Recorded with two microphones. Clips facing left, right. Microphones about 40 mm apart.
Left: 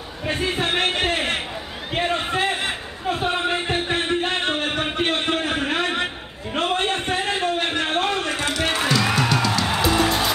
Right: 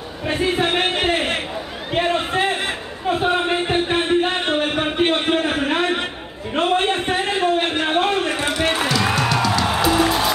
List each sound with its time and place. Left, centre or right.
0.3 s a man's voice: centre
3.1 s music: centre
6.5 s a sound: centre
8.6 s music: centre